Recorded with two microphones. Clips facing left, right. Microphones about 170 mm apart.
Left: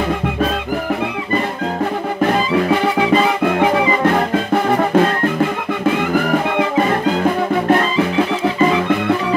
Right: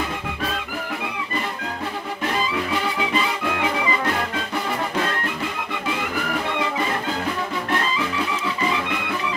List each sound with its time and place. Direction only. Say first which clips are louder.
3.5 s music: left 9 dB; 45° left (ahead or behind)